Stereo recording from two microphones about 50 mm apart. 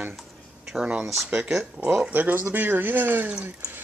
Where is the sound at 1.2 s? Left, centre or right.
Right.